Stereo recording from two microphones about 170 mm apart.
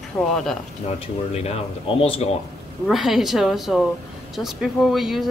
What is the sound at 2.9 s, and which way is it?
Speech, centre (ahead or behind).